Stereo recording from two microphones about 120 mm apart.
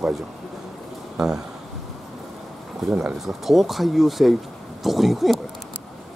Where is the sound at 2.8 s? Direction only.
5° right (ahead or behind).